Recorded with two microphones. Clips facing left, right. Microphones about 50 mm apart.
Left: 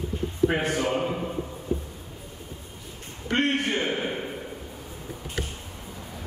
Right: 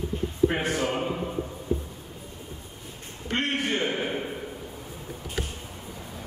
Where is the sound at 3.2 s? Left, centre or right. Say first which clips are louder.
Left 3 dB; left.